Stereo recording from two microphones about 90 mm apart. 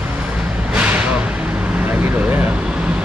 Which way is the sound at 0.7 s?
15° right (ahead or behind).